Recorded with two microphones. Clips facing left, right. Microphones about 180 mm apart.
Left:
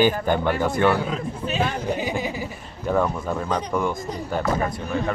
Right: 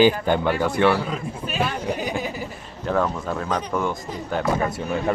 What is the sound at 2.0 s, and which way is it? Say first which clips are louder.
Speech: left 1 dB; 15° left (ahead or behind).